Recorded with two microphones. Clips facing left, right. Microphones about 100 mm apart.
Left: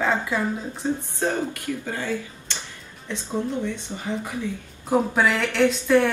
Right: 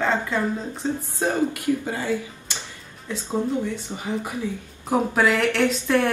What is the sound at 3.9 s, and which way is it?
Speech, 30° right (ahead or behind).